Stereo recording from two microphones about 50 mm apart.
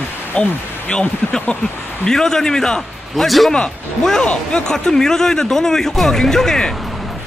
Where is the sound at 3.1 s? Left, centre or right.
Centre.